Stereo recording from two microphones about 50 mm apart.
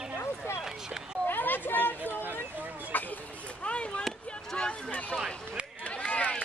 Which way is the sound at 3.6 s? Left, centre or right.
Left.